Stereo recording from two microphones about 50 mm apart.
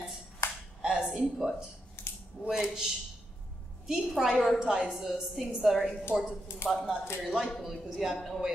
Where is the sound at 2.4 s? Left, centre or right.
Centre.